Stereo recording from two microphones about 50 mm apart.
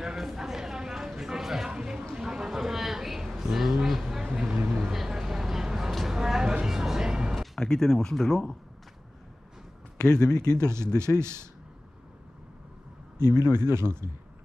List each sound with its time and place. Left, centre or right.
0.0 s a sound: centre
4.3 s vehicle: centre
5.9 s a sound: centre
6.7 s vehicle: centre
7.6 s speech: centre
9.9 s speech: centre
10.5 s speech: right
13.5 s speech: right